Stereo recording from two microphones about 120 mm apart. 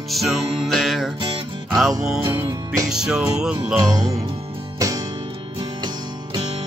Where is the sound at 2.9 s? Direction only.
5° right (ahead or behind).